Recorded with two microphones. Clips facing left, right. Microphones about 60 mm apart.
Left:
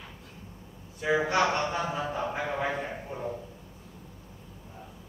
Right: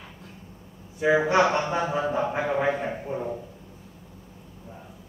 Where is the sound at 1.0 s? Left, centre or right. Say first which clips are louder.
Right 5 dB; right.